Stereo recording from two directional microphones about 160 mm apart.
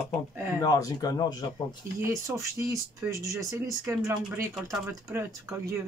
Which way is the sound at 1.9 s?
20° right (ahead or behind).